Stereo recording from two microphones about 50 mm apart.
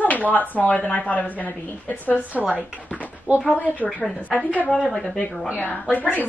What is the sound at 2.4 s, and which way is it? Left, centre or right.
Speech, centre.